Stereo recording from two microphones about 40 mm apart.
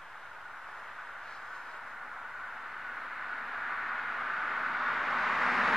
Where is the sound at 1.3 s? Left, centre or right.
Centre.